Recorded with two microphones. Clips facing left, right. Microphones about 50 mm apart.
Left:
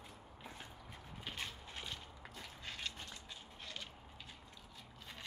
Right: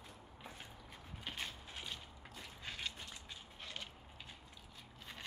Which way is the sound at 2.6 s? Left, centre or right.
Centre.